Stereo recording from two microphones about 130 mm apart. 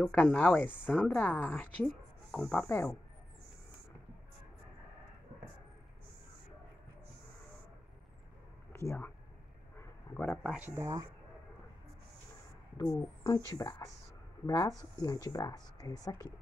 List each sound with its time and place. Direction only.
0.0 s a woman's voice: 10° left (ahead or behind)
1.9 s a sound: 5° left (ahead or behind)
2.7 s a woman's voice: 15° left (ahead or behind)
8.7 s speech: 20° left (ahead or behind)
9.8 s a sound: 10° left (ahead or behind)
10.6 s speech: 20° right (ahead or behind)
12.9 s speech: 25° left (ahead or behind)